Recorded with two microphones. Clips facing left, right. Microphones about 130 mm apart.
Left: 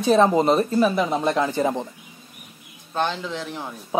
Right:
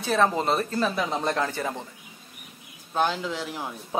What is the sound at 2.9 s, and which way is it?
Speech, 5° right (ahead or behind).